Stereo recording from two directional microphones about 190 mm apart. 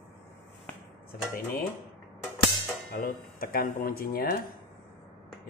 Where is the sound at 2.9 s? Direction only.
50° left (ahead or behind).